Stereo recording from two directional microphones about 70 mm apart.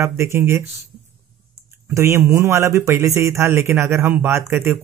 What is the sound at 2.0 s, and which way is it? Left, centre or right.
Speech, right.